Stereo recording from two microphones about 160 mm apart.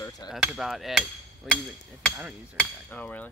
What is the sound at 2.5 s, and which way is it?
Hammer, 10° left (ahead or behind).